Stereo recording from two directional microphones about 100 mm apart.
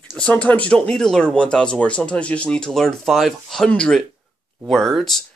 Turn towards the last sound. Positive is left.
turn(degrees=5)  # may be behind; listen again after turning